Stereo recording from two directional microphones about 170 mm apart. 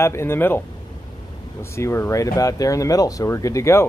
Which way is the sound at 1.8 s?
15° left (ahead or behind).